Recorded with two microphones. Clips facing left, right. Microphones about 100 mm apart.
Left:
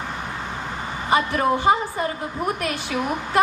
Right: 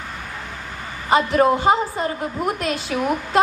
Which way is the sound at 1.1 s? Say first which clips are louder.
Right 4 dB; 25° right (ahead or behind).